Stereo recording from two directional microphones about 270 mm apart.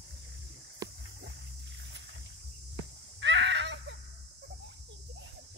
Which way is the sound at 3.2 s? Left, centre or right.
Right.